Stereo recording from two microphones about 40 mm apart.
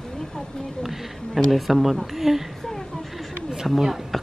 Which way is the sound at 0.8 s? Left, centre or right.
Centre.